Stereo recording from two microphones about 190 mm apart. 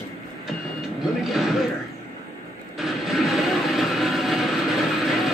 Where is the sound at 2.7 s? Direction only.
Centre (ahead or behind).